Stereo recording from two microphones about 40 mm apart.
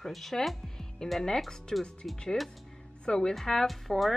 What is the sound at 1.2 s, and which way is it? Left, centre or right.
Speech, centre.